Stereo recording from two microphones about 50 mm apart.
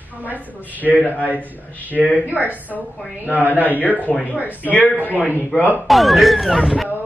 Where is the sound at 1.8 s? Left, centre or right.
Right.